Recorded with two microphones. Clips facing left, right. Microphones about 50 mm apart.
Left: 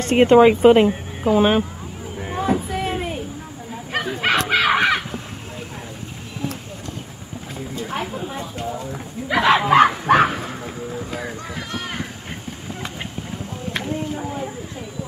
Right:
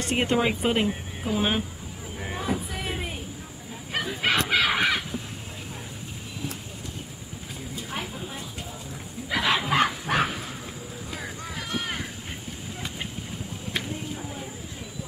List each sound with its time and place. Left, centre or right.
0.1 s speech: left
2.1 s a sound: centre
3.9 s bow-wow: left
4.5 s crow: left
8.2 s clip-clop: left
9.3 s bow-wow: left
9.7 s fowl: left
13.8 s a sound: left